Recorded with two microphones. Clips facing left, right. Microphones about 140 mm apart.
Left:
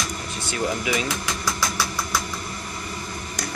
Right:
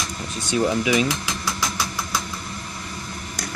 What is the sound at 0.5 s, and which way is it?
Speech, 20° right (ahead or behind).